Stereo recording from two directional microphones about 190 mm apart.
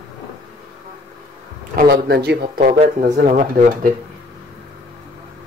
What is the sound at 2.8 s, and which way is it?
Speech, 40° right (ahead or behind).